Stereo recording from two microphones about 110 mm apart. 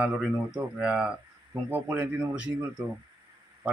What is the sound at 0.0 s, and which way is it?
Speech, 5° right (ahead or behind).